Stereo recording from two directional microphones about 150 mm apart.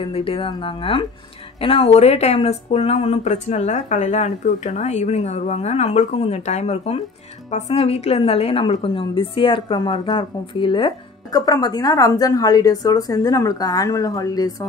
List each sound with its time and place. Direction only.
0.0 s a woman's voice: 40° left (ahead or behind)